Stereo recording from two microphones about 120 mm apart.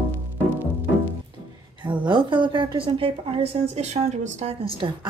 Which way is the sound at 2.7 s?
45° right (ahead or behind).